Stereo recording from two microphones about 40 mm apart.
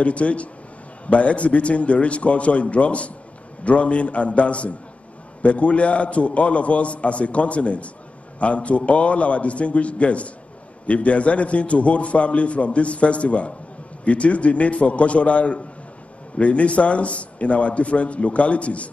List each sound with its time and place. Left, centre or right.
0.0 s a man's voice: left